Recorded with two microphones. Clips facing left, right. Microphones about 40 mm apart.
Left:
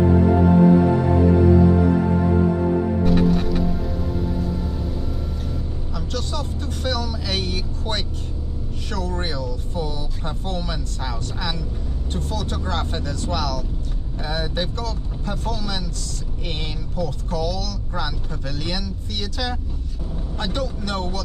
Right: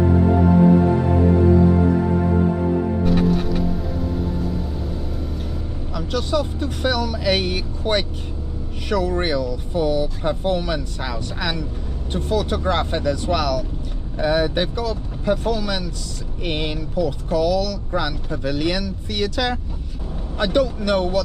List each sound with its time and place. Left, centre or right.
3.1 s music: centre
5.9 s speech: centre
14.2 s speech: right
17.0 s speech: centre